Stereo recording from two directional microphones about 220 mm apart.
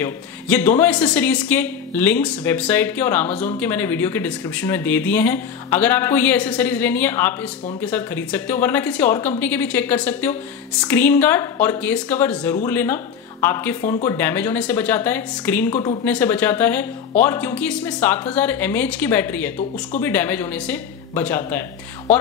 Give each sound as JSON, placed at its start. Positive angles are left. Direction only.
{"t": 0.0, "sound": "speech", "side_deg": 10}